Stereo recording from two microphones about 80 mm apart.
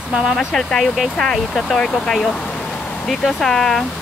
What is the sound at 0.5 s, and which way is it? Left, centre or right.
Speech, centre.